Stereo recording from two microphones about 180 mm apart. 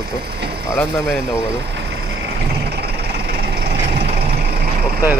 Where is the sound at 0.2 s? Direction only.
60° right (ahead or behind).